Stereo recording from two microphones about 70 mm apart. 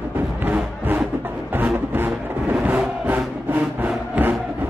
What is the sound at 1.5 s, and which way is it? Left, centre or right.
Music, right.